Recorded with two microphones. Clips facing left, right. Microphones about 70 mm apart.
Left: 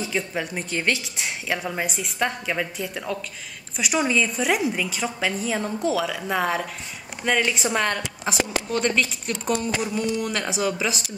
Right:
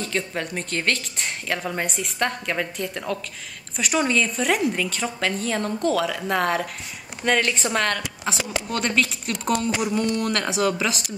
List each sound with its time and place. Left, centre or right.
0.0 s a woman's voice: centre
9.7 s a sound: centre
9.9 s a woman's voice: centre